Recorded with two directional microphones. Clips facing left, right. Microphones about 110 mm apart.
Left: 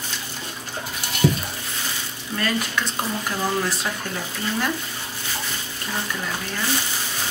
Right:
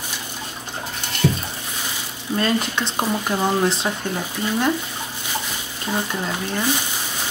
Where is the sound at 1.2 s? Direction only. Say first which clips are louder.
Left 1 dB; 15° left (ahead or behind).